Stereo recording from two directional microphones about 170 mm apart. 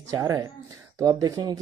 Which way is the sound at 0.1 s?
20° right (ahead or behind).